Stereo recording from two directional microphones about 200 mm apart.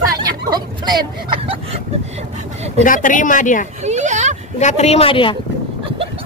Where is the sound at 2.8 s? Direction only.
40° left (ahead or behind).